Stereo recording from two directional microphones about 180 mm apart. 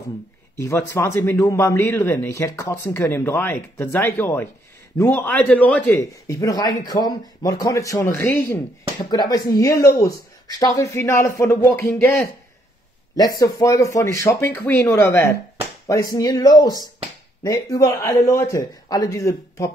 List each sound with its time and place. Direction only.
0.6 s a man's voice: 15° left (ahead or behind)
13.4 s a man's voice: 20° left (ahead or behind)